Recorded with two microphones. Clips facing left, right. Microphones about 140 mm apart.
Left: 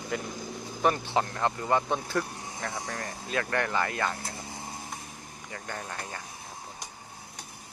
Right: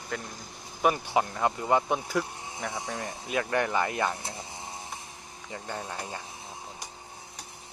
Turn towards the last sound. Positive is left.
turn(degrees=-15)  # may be behind; listen again after turning